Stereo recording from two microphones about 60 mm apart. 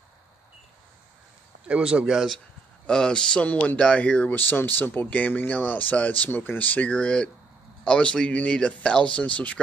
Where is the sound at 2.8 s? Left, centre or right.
Centre.